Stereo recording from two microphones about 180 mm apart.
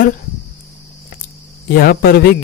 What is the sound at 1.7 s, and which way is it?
Speech, 60° left (ahead or behind).